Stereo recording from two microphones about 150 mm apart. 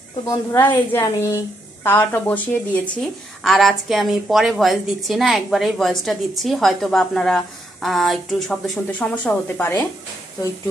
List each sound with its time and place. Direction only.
0.3 s a woman's voice: 15° left (ahead or behind)